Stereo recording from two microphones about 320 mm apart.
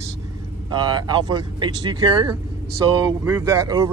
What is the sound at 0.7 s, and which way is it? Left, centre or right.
Speech, centre.